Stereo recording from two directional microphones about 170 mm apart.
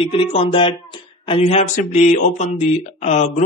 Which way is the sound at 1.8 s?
45° left (ahead or behind).